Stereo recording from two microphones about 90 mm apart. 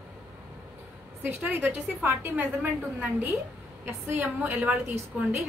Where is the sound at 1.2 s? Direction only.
20° right (ahead or behind).